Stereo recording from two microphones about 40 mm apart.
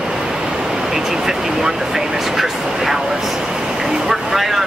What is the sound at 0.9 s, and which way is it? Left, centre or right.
Speech, centre.